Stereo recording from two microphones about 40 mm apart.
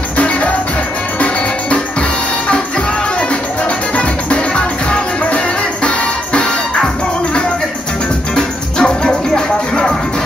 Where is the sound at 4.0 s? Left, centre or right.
Left.